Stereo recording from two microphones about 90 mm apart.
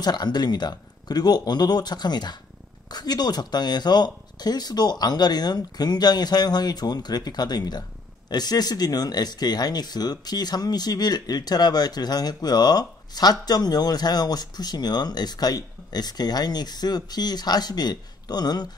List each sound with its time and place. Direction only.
0.0 s speech: 50° left (ahead or behind)